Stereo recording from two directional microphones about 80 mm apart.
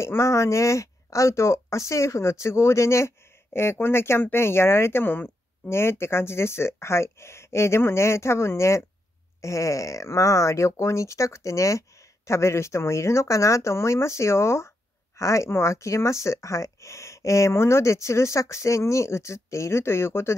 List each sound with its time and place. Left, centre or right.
0.0 s speech: left